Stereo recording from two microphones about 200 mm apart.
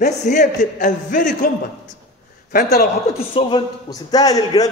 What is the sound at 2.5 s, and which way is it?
Speech, 50° left (ahead or behind).